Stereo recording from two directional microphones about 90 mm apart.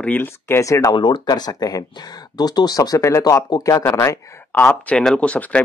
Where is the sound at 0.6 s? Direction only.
40° left (ahead or behind).